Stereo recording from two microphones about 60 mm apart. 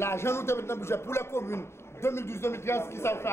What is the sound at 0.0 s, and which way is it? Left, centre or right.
A man's voice, left.